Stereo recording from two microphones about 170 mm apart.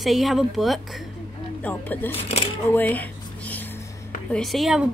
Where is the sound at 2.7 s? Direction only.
10° left (ahead or behind).